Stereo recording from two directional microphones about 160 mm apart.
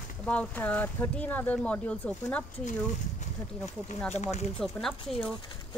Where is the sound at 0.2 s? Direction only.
10° left (ahead or behind).